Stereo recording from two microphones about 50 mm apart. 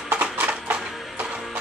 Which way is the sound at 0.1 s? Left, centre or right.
Right.